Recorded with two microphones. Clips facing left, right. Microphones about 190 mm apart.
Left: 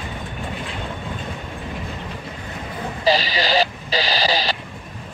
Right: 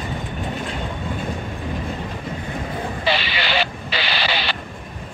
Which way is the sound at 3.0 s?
40° left (ahead or behind).